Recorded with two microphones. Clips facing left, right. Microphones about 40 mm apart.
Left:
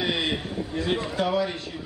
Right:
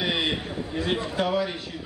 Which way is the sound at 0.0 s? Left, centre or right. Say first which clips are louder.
Even; centre.